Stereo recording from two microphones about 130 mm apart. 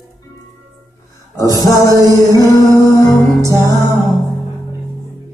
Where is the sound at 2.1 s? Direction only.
25° left (ahead or behind).